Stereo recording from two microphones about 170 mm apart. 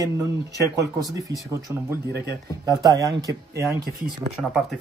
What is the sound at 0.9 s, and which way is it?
Speech, 20° right (ahead or behind).